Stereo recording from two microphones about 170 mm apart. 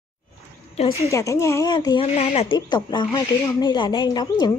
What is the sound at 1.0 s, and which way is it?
Speech, 20° left (ahead or behind).